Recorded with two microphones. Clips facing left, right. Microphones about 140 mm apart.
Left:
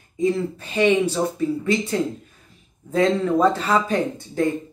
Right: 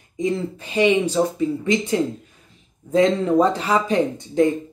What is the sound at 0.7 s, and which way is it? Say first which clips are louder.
Speech: right 1 dB; 15° right (ahead or behind).